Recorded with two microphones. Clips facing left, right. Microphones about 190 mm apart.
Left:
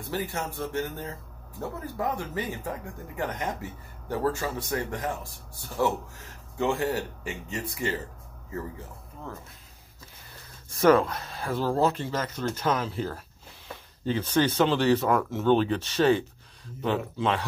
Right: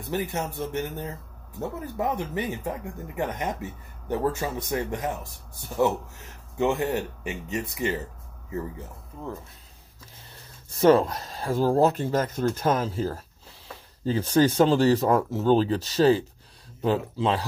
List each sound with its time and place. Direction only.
0.1 s speech: 20° right (ahead or behind)
6.6 s speech: 20° right (ahead or behind)
10.8 s speech: 30° right (ahead or behind)